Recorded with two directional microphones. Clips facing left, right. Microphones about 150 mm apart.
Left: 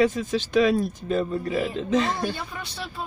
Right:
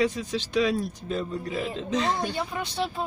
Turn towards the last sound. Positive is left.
turn(degrees=-20)  # may be behind; listen again after turning